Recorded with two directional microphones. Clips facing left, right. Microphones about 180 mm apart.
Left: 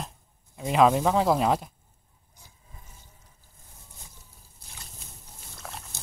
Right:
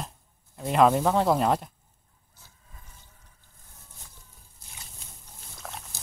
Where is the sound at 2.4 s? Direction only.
15° left (ahead or behind).